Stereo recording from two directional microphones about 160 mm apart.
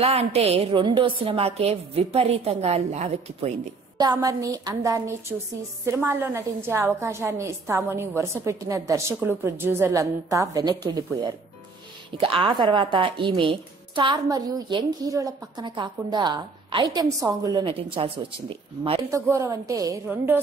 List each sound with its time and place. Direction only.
0.0 s a woman's voice: 40° right (ahead or behind)
4.0 s a woman's voice: 25° right (ahead or behind)
12.2 s a woman's voice: 35° right (ahead or behind)
18.9 s a woman's voice: 20° right (ahead or behind)